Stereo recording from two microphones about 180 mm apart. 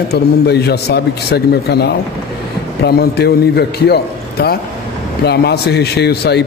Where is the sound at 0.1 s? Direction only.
65° left (ahead or behind).